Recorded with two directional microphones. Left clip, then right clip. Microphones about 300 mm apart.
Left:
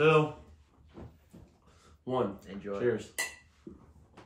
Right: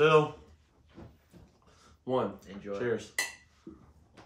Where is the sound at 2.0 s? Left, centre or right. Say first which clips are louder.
Right 1 dB; centre.